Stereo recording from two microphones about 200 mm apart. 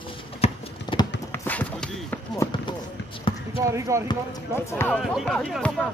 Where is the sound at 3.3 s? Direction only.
25° left (ahead or behind).